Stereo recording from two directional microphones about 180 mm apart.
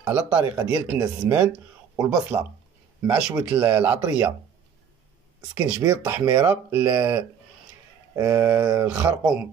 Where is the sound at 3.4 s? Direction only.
15° right (ahead or behind).